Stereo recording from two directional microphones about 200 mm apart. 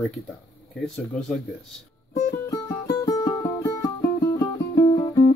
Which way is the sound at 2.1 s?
20° left (ahead or behind).